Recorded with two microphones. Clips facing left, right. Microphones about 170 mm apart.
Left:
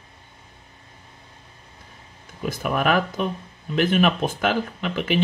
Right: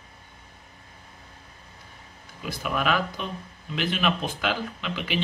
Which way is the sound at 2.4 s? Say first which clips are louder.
Left 4 dB; 45° left (ahead or behind).